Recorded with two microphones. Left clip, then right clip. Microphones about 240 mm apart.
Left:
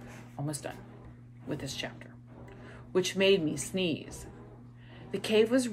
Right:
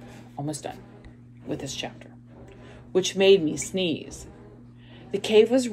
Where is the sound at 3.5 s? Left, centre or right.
Right.